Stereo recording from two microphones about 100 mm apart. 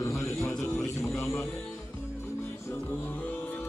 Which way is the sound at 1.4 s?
5° left (ahead or behind).